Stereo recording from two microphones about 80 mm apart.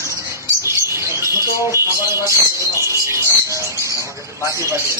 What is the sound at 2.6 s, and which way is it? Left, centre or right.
Bird, right.